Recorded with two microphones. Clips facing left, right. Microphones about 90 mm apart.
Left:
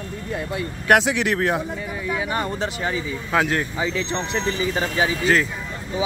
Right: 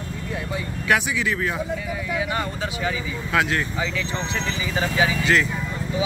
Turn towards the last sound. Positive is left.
turn(degrees=35)  # may be behind; listen again after turning